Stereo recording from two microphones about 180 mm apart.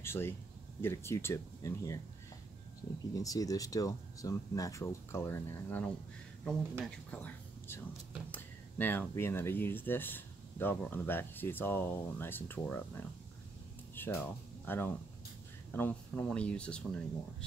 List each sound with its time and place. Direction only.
0.0 s speech: 15° left (ahead or behind)
3.2 s speech: 20° left (ahead or behind)